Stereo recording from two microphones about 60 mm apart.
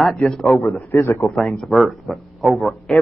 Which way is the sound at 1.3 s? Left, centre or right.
Centre.